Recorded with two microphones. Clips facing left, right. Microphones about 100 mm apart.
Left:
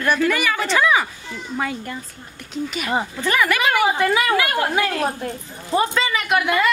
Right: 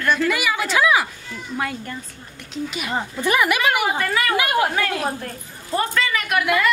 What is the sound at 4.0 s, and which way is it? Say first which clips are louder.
Speech: left 3 dB; 15° left (ahead or behind).